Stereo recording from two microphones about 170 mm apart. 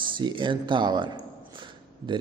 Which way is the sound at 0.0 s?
30° right (ahead or behind).